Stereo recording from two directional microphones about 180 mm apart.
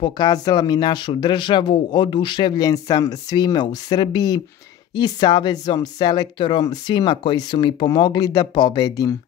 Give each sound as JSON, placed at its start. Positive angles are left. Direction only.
{"t": 0.0, "sound": "speech", "side_deg": 20}